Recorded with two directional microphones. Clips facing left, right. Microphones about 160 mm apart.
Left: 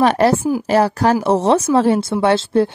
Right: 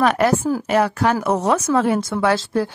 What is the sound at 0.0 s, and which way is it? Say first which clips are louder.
Speech: left 3 dB; 30° left (ahead or behind).